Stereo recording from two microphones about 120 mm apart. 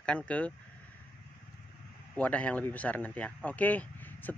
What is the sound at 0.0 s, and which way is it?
Speech, 10° left (ahead or behind).